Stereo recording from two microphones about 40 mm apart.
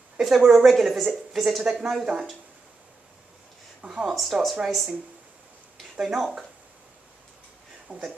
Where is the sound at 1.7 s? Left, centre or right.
Centre.